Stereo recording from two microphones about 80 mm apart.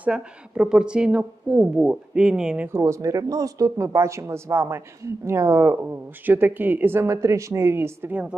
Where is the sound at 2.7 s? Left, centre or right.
Right.